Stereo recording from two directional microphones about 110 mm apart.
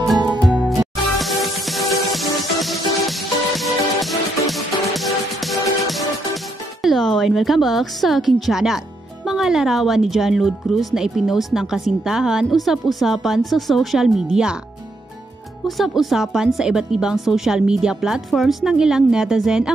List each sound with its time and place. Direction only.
0.4 s music: 5° right (ahead or behind)
15.6 s speech: centre (ahead or behind)